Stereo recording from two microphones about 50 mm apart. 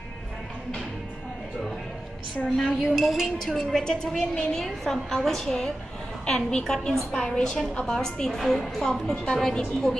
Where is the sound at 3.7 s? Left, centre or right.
Centre.